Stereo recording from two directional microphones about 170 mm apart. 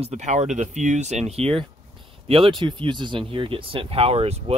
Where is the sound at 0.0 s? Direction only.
40° right (ahead or behind).